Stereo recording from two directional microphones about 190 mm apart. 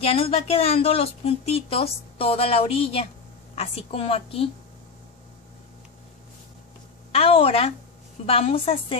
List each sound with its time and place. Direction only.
0.0 s a woman's voice: 30° left (ahead or behind)
7.1 s a woman's voice: 30° left (ahead or behind)